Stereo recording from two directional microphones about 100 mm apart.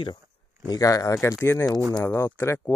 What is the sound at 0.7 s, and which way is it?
Speech, 40° left (ahead or behind).